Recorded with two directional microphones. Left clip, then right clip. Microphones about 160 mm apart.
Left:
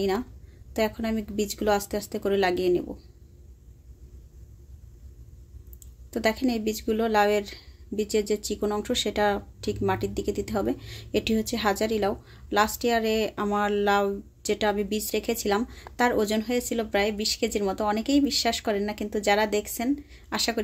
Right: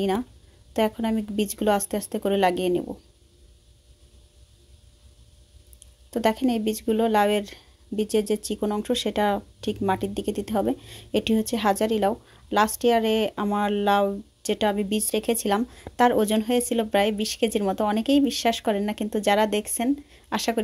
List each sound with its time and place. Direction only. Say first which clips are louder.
0.7 s speech: right 3 dB; 35° right (ahead or behind)
6.0 s speech: right 2 dB; 30° right (ahead or behind)